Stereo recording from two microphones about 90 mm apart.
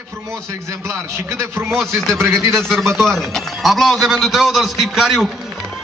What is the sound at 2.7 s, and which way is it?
A man's voice, 5° left (ahead or behind).